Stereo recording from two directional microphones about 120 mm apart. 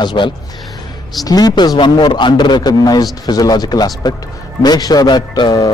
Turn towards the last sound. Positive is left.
turn(degrees=35)  # may be behind; listen again after turning